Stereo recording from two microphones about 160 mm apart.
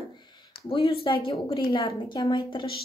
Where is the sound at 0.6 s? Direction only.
35° left (ahead or behind).